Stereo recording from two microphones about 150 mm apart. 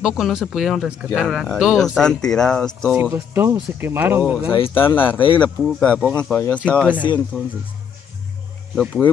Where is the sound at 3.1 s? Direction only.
15° right (ahead or behind).